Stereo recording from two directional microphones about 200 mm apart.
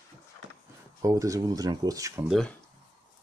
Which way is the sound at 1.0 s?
15° right (ahead or behind).